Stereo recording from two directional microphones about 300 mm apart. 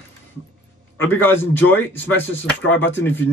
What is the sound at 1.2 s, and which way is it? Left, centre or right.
Speech, centre.